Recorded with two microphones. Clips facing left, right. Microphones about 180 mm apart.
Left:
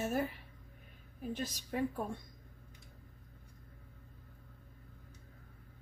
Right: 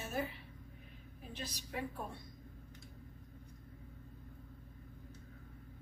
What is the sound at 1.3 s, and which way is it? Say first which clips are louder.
Speech: left 5 dB; 45° left (ahead or behind).